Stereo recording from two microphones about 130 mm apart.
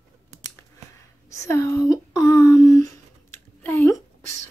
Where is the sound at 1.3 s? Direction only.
25° left (ahead or behind).